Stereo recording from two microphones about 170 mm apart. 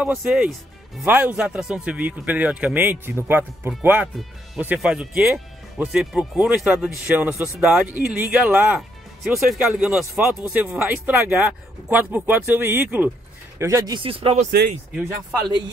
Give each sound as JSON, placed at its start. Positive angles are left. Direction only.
{"t": 0.0, "sound": "a man's voice", "side_deg": -10}